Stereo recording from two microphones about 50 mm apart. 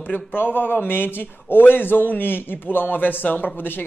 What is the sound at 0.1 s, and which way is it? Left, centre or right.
A man's voice, left.